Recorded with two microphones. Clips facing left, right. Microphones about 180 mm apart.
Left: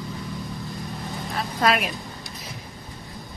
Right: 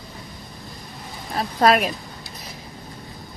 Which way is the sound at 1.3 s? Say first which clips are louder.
Right 5 dB; 40° right (ahead or behind).